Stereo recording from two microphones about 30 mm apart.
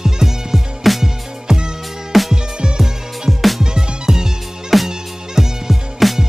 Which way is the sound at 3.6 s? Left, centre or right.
Right.